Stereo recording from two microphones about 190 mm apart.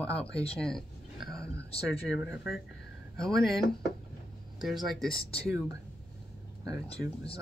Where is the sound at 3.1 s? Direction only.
Centre (ahead or behind).